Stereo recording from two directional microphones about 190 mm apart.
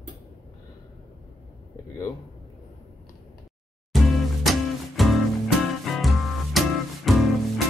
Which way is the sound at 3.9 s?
Centre (ahead or behind).